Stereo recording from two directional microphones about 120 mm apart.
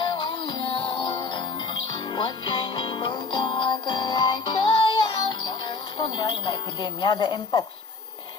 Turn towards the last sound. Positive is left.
turn(degrees=35)  # may be behind; listen again after turning